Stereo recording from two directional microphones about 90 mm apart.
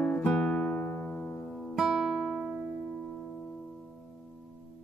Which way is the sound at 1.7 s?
5° right (ahead or behind).